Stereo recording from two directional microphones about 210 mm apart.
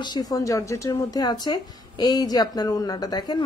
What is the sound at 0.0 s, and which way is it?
Speech, 20° left (ahead or behind).